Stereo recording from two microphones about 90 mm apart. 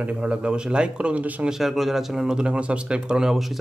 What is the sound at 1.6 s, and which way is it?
Speech, centre (ahead or behind).